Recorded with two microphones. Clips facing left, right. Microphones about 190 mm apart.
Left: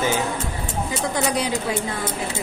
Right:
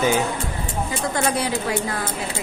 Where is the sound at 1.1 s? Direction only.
15° left (ahead or behind).